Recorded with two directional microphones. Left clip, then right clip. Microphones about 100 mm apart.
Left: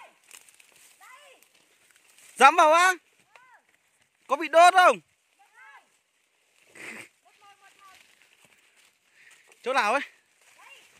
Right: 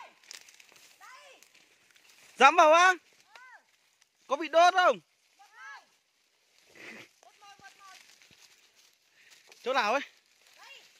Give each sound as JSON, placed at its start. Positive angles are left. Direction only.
{"t": 0.6, "sound": "a sound", "side_deg": 0}
{"t": 2.3, "sound": "speech", "side_deg": 10}
{"t": 4.3, "sound": "speech", "side_deg": 25}
{"t": 4.7, "sound": "speech", "side_deg": 50}
{"t": 6.7, "sound": "zipper", "side_deg": 35}
{"t": 9.6, "sound": "speech", "side_deg": 25}